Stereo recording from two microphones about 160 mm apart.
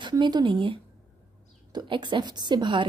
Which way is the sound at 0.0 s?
25° right (ahead or behind).